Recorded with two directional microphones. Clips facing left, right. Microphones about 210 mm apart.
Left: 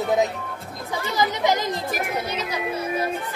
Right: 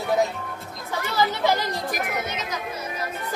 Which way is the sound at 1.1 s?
15° left (ahead or behind).